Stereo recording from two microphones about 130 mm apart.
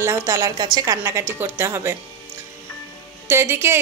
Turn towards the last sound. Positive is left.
turn(degrees=-20)  # may be behind; listen again after turning